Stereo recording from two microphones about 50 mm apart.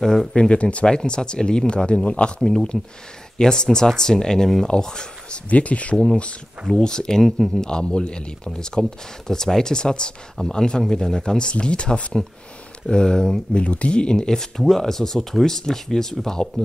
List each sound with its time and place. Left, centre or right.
0.0 s speech: centre
0.4 s speech: left
5.5 s speech: left
6.7 s speech: centre